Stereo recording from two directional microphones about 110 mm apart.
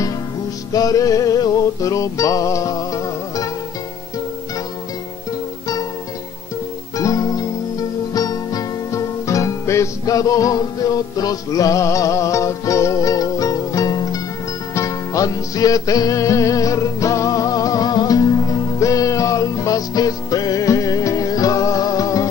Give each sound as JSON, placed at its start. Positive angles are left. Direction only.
{"t": 0.7, "sound": "music", "side_deg": 35}
{"t": 7.0, "sound": "music", "side_deg": 35}